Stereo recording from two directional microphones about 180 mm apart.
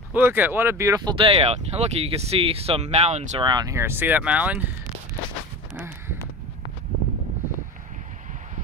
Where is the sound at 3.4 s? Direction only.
25° right (ahead or behind); by 4.6 s 10° right (ahead or behind).